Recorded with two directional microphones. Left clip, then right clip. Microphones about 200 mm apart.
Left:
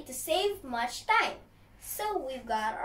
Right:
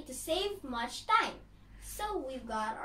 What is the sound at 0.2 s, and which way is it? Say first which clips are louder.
Speech: left 5 dB; 5° left (ahead or behind).